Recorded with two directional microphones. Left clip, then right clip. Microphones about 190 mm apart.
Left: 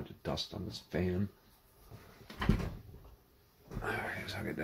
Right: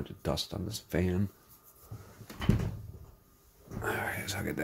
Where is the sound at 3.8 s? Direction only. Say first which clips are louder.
Right 4 dB; 65° right (ahead or behind).